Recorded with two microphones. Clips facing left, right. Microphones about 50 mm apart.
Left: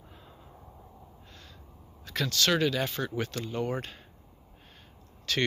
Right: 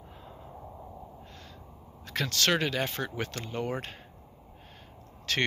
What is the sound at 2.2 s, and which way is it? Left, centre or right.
Speech, right.